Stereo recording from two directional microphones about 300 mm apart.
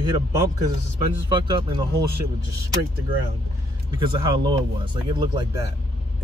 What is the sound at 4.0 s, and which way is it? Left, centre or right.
Speech, centre.